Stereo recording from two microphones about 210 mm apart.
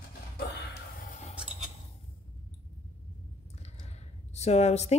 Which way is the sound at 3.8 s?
30° left (ahead or behind).